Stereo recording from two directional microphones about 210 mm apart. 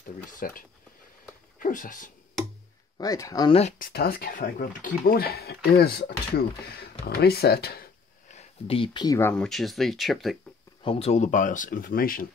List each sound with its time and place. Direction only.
0.0 s speech: 40° left (ahead or behind)
3.0 s speech: 15° left (ahead or behind)
3.7 s speech: 45° left (ahead or behind)
8.3 s speech: 30° left (ahead or behind)
9.3 s speech: centre (ahead or behind)
10.8 s speech: 30° left (ahead or behind); by 12.3 s 45° left (ahead or behind)